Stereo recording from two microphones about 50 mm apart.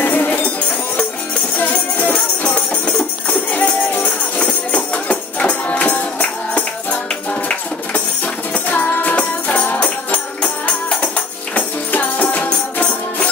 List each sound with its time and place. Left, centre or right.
0.0 s music: left
1.6 s music: left
2.1 s music: left
11.5 s music: left